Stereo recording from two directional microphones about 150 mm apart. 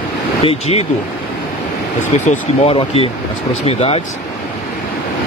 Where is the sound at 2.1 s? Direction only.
50° left (ahead or behind).